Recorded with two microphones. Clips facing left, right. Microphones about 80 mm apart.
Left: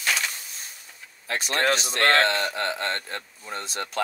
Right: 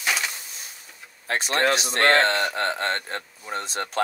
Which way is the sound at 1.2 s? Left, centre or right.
Right.